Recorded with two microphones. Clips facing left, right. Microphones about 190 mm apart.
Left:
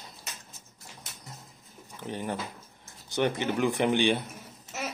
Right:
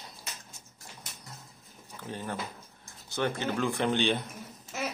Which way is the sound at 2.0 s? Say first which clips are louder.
Left 3 dB; 15° left (ahead or behind).